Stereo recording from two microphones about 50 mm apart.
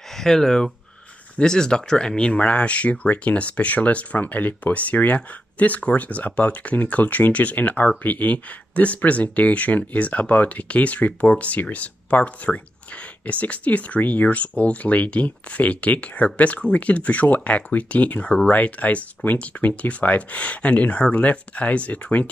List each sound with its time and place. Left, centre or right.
0.1 s speech: centre; by 22.3 s left